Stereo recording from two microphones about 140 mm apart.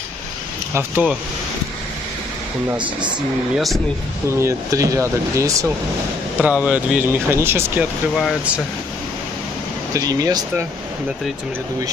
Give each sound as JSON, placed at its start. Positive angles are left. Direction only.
{"t": 0.7, "sound": "speech", "side_deg": -10}
{"t": 3.5, "sound": "speech", "side_deg": 0}
{"t": 4.4, "sound": "speech", "side_deg": -20}
{"t": 6.3, "sound": "speech", "side_deg": -10}
{"t": 8.2, "sound": "speech", "side_deg": 0}
{"t": 9.9, "sound": "speech", "side_deg": -25}